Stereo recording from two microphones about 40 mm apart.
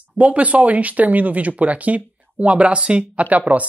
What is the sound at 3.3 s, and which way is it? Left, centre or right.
Speech, right.